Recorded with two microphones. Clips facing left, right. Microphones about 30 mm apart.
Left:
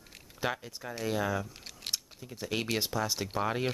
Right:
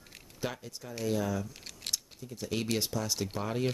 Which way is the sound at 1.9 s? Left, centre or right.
Left.